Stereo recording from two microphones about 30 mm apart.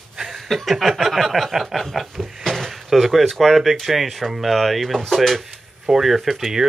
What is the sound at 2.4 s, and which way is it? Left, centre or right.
Drawer open or close, centre.